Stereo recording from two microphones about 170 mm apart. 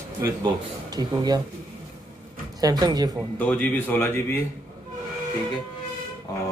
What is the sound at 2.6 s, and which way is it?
Speech, 25° right (ahead or behind).